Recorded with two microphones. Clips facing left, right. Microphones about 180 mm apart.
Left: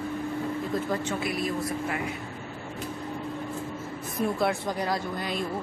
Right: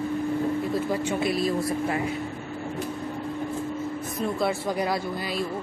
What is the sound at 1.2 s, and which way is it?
Speech, 30° right (ahead or behind).